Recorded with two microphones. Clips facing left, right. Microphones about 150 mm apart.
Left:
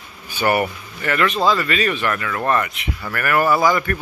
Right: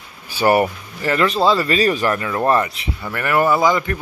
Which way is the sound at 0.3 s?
35° right (ahead or behind).